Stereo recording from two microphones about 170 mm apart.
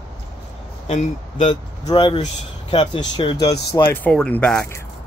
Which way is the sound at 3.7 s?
15° left (ahead or behind).